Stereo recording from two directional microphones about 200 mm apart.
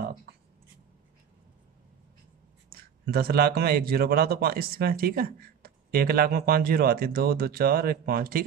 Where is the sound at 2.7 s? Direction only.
50° right (ahead or behind).